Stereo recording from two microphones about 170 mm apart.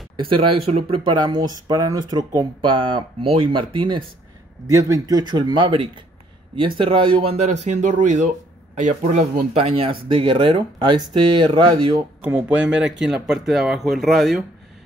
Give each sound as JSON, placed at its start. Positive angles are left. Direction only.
{"t": 0.2, "sound": "speech", "side_deg": -30}
{"t": 7.6, "sound": "speech", "side_deg": -45}
{"t": 9.7, "sound": "speech", "side_deg": -35}
{"t": 12.2, "sound": "speech", "side_deg": -10}